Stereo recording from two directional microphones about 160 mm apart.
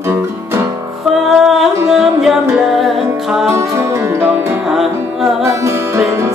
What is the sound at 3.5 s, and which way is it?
Music, 15° right (ahead or behind).